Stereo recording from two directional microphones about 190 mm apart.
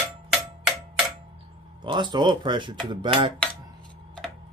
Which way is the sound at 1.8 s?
25° right (ahead or behind).